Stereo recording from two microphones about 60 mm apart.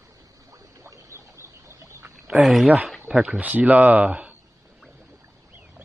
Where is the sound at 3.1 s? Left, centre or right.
Centre.